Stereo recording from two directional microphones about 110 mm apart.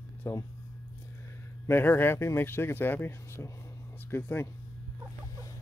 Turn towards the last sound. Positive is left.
turn(degrees=20)  # may be behind; listen again after turning